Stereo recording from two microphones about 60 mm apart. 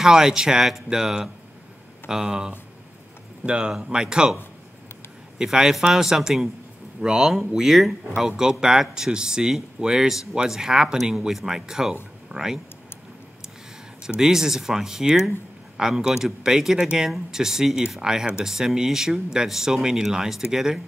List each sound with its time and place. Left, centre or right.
0.0 s speech: centre
5.4 s speech: centre
14.0 s speech: centre